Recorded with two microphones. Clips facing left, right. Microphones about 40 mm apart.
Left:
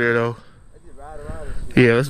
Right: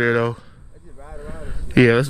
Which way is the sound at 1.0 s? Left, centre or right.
Centre.